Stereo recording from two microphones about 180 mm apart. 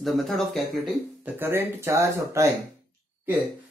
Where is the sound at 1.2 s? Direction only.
15° right (ahead or behind).